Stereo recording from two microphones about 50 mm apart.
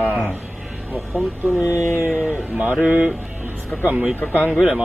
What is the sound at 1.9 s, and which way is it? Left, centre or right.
Music, right.